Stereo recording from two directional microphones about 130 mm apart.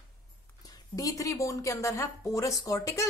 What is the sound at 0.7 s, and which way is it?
Speech, 25° left (ahead or behind).